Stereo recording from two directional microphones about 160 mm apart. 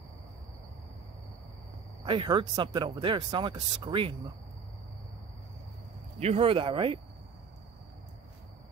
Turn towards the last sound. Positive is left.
turn(degrees=-30)  # may be behind; listen again after turning